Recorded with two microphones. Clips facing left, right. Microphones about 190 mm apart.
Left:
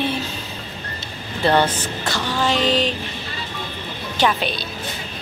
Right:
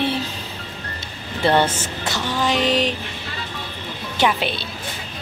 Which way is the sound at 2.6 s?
25° left (ahead or behind).